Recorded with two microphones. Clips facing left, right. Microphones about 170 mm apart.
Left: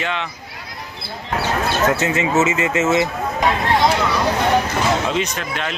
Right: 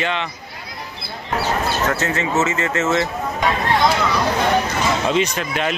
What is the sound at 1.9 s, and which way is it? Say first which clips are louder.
Speech: left 2 dB; 15° left (ahead or behind).